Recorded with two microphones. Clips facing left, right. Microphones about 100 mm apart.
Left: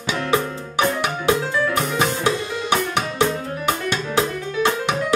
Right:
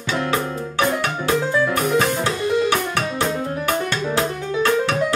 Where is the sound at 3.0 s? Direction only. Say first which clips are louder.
Left 1 dB; 20° left (ahead or behind).